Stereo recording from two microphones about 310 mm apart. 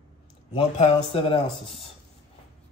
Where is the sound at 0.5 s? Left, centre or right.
Centre.